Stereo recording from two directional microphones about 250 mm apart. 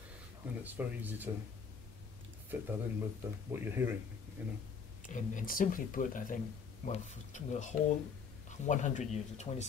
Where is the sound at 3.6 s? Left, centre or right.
Centre.